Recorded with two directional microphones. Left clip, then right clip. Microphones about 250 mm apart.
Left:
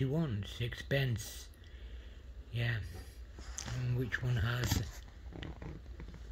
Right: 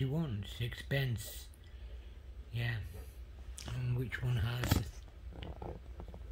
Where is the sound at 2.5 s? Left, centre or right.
Centre.